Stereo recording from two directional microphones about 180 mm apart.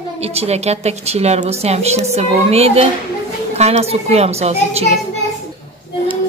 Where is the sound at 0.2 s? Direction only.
35° right (ahead or behind).